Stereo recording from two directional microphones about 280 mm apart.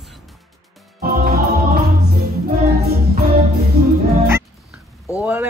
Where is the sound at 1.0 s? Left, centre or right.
Right.